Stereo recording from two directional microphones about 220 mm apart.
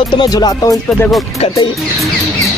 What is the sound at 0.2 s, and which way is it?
Speech, 20° left (ahead or behind).